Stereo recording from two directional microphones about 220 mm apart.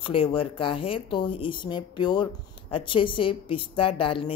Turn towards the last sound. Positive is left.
turn(degrees=25)  # may be behind; listen again after turning